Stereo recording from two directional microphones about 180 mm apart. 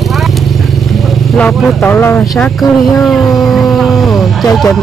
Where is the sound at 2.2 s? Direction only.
Centre (ahead or behind).